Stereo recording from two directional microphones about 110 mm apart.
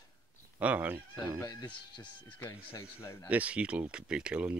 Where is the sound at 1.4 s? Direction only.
30° left (ahead or behind).